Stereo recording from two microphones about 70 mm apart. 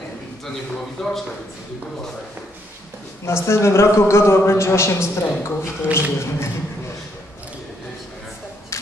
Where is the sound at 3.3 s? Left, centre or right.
Left.